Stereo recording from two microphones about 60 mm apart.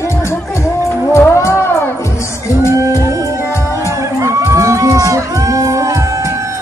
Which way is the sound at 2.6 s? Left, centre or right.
Right.